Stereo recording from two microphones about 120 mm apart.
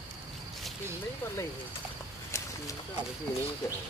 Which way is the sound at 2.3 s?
25° left (ahead or behind).